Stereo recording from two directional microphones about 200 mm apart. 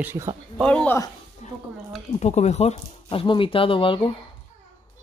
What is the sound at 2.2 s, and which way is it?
Speech, 35° left (ahead or behind).